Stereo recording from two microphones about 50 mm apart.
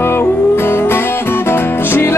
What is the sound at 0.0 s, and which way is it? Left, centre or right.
Music, left.